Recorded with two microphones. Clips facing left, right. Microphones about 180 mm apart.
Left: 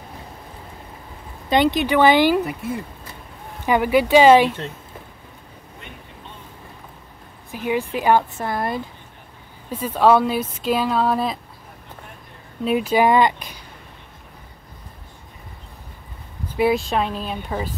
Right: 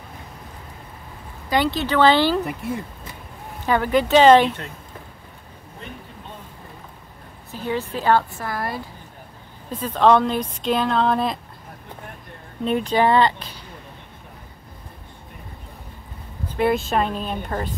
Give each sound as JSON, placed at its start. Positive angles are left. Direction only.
{"t": 1.5, "sound": "speech", "side_deg": 20}
{"t": 2.4, "sound": "speech", "side_deg": 0}
{"t": 3.6, "sound": "speech", "side_deg": 15}
{"t": 7.5, "sound": "speech", "side_deg": 15}
{"t": 9.7, "sound": "speech", "side_deg": 10}
{"t": 12.6, "sound": "speech", "side_deg": 5}
{"t": 16.5, "sound": "speech", "side_deg": 0}